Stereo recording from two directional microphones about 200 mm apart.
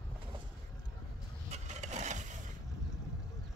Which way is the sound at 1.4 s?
35° right (ahead or behind).